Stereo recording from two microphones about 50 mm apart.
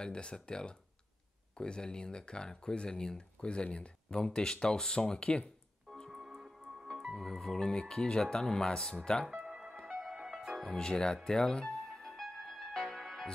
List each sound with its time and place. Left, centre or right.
0.0 s speech: centre
6.0 s speech: centre
9.5 s music: right
10.7 s speech: centre
11.2 s music: centre